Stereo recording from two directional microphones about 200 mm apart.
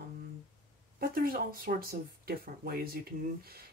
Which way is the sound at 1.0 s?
45° right (ahead or behind).